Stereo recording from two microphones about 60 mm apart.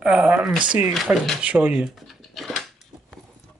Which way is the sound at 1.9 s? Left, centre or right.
Centre.